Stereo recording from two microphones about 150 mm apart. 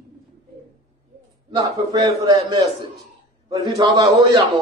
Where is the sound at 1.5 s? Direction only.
25° right (ahead or behind).